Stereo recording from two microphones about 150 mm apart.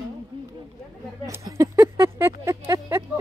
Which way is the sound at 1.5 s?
20° right (ahead or behind).